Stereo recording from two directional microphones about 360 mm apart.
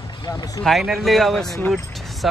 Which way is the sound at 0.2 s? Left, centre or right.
Centre.